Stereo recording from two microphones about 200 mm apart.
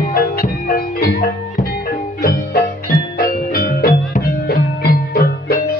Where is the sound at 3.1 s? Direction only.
45° left (ahead or behind).